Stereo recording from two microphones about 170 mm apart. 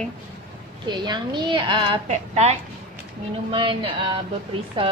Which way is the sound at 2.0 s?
40° right (ahead or behind).